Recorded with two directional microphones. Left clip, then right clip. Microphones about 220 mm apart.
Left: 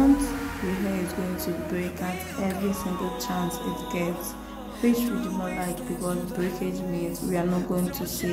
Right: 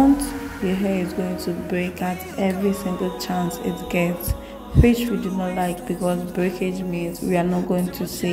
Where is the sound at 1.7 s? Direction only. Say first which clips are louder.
Right 5 dB; 15° right (ahead or behind).